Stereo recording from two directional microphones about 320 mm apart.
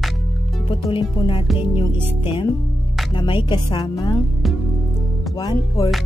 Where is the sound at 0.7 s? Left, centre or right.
Centre.